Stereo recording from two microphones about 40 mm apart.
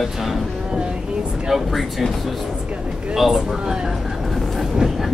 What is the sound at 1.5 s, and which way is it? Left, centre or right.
Speech, centre.